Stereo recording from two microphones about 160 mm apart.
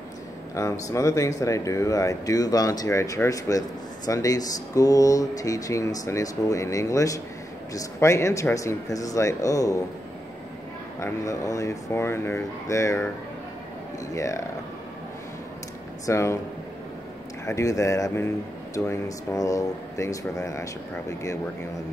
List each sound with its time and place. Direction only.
0.6 s speech: 20° left (ahead or behind)
11.0 s speech: 20° left (ahead or behind)
14.1 s speech: 20° left (ahead or behind)
16.1 s speech: 15° left (ahead or behind)
17.5 s speech: 20° left (ahead or behind)